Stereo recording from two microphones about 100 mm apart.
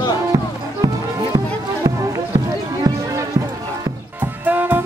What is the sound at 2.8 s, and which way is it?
Music, 30° right (ahead or behind).